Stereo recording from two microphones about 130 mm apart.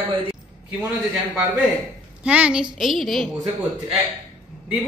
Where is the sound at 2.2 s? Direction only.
10° right (ahead or behind).